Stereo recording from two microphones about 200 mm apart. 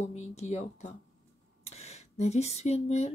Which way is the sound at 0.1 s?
35° left (ahead or behind).